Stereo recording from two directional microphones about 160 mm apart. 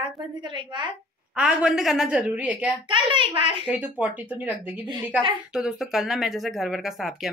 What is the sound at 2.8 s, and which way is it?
Speech, 30° right (ahead or behind).